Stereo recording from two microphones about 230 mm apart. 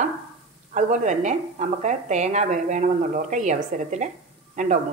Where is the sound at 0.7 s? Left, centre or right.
Right.